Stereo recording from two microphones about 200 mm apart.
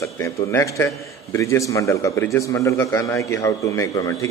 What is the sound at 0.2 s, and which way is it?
A man's voice, 15° left (ahead or behind).